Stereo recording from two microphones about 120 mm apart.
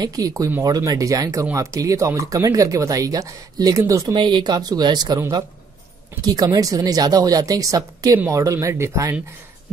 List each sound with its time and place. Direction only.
0.0 s speech: 30° right (ahead or behind)
4.1 s speech: 40° right (ahead or behind)
6.2 s speech: 30° right (ahead or behind)